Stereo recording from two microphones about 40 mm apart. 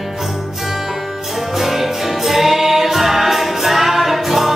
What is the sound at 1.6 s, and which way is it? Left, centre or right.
Music, centre.